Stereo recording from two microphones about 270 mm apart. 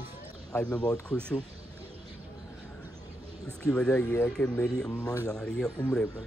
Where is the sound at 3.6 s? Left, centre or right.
Centre.